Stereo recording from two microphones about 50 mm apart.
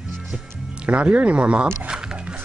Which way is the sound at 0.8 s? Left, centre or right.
Right.